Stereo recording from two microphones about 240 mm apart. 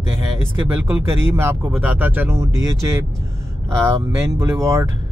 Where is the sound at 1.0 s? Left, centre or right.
Centre.